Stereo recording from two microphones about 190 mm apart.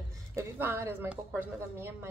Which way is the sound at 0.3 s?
10° right (ahead or behind).